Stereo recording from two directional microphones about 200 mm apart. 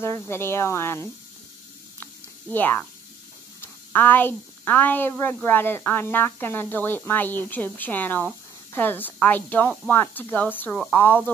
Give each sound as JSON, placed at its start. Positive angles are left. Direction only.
{"t": 0.0, "sound": "a woman's voice", "side_deg": 10}
{"t": 2.5, "sound": "a woman's voice", "side_deg": 10}